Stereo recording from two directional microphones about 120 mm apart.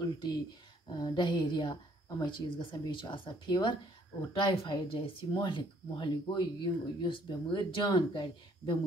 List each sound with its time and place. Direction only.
0.0 s speech: 35° left (ahead or behind)